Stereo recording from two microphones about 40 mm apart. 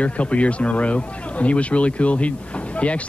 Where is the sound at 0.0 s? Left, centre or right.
Left.